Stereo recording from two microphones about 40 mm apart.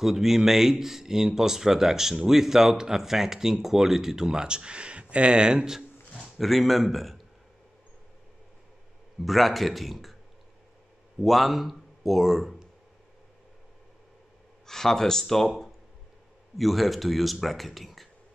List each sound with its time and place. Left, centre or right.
0.0 s speech: centre
6.4 s speech: centre
9.2 s speech: centre
11.1 s speech: centre
14.7 s speech: centre
16.5 s speech: centre